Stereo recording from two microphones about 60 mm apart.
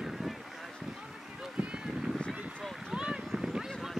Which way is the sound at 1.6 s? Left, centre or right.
Centre.